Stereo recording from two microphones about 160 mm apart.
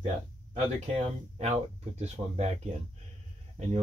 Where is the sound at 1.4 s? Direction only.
45° right (ahead or behind).